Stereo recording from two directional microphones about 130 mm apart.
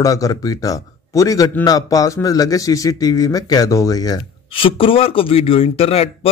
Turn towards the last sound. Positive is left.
turn(degrees=50)  # may be behind; listen again after turning